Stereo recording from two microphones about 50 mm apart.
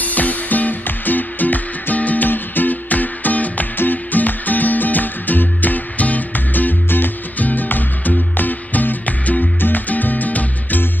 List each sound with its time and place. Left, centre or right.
0.0 s music: left